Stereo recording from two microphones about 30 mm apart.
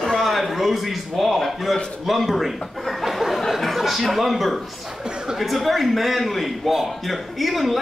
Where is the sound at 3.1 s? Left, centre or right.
Centre.